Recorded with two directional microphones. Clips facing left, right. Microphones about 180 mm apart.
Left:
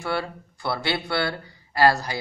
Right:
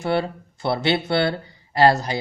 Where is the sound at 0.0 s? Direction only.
25° right (ahead or behind).